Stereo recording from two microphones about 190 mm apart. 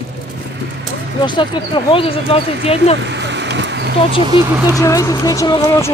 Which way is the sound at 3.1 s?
65° right (ahead or behind).